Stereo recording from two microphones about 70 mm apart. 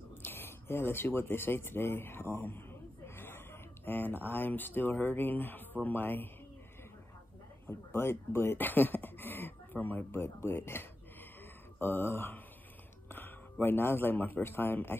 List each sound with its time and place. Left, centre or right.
0.1 s speech: left
7.9 s a man's voice: left